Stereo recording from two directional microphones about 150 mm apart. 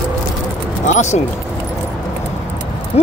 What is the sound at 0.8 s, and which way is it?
Speech, 50° left (ahead or behind).